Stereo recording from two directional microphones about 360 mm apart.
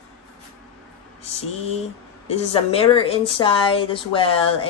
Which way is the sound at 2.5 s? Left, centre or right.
Centre.